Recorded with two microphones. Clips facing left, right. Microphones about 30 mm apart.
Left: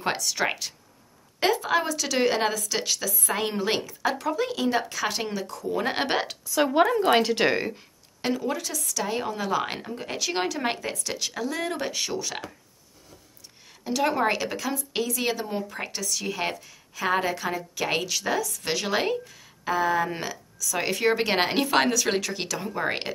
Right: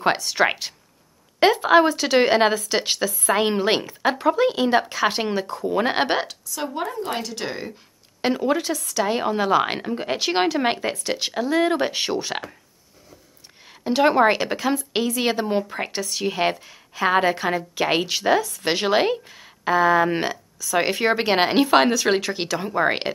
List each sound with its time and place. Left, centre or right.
0.0 s speech: right
6.7 s speech: left
7.2 s speech: left
8.2 s speech: right
13.8 s speech: right